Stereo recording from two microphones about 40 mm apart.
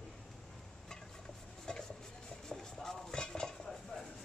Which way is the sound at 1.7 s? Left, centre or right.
Left.